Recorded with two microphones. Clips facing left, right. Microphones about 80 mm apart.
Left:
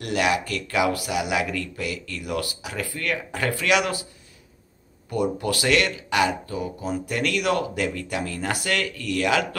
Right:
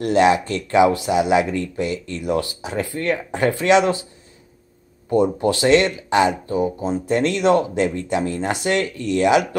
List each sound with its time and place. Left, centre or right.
0.0 s speech: right
5.1 s speech: right